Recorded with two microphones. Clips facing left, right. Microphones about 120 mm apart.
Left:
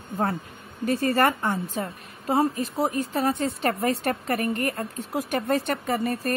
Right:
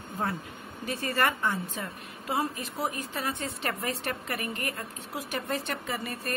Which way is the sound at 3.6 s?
40° left (ahead or behind).